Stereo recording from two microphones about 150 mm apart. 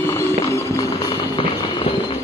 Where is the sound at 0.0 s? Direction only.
20° left (ahead or behind).